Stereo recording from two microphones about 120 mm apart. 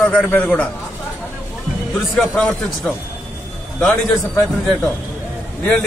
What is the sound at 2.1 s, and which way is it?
Speech, 5° left (ahead or behind).